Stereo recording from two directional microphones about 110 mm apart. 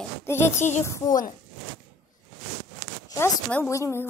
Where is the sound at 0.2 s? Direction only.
20° left (ahead or behind).